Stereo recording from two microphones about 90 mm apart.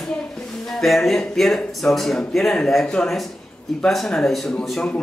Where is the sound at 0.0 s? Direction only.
5° left (ahead or behind).